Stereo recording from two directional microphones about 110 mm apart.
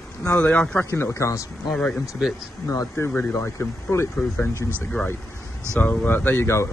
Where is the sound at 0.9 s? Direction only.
20° left (ahead or behind).